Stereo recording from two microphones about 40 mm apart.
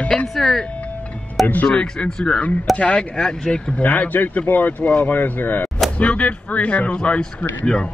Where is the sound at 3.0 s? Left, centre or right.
Centre.